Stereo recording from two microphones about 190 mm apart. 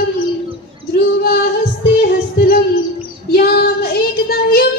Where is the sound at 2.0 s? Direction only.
55° left (ahead or behind).